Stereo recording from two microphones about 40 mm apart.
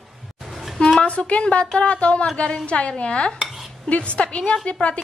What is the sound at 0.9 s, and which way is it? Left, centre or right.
A woman's voice, left.